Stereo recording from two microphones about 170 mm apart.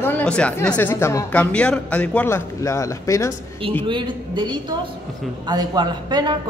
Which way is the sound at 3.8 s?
30° right (ahead or behind).